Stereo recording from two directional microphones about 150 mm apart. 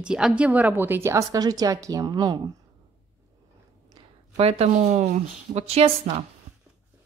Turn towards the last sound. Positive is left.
turn(degrees=-45)  # may be behind; listen again after turning